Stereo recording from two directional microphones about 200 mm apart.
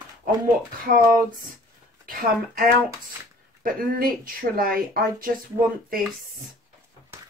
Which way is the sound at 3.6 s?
45° right (ahead or behind).